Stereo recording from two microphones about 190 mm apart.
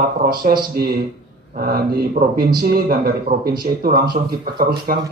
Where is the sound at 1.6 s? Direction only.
50° right (ahead or behind).